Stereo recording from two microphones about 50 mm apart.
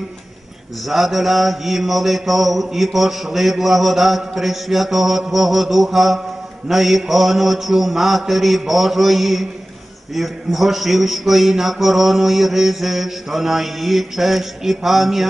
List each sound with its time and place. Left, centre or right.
0.8 s mantra: centre